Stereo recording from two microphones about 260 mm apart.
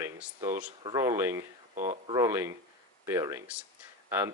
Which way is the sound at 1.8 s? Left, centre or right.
Right.